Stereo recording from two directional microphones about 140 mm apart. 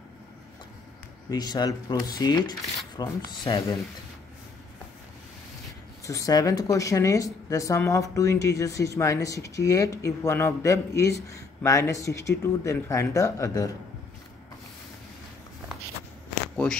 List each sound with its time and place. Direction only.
1.3 s speech: 30° left (ahead or behind)
6.0 s speech: 25° left (ahead or behind)